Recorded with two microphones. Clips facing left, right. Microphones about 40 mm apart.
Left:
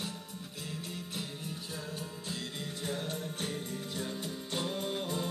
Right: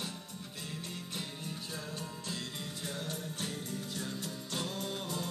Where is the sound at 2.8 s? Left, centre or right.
Left.